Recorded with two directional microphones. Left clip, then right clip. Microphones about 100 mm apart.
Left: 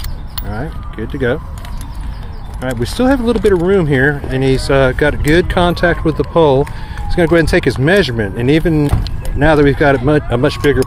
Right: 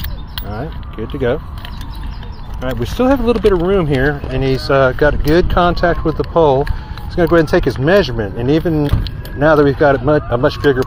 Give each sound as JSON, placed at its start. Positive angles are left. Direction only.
{"t": 2.6, "sound": "speech", "side_deg": 35}
{"t": 3.6, "sound": "speech", "side_deg": 45}